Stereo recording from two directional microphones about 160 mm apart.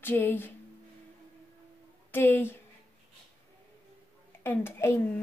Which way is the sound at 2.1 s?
15° left (ahead or behind).